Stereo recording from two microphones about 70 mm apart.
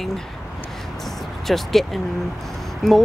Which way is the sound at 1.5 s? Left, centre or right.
Centre.